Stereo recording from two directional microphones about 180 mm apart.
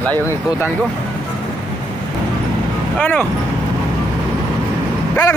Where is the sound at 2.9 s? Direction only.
10° left (ahead or behind).